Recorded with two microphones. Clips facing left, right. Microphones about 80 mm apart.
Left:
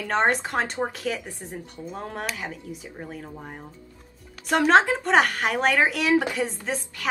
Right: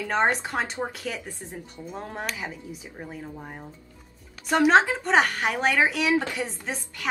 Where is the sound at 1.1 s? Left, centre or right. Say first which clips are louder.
Left 3 dB; centre.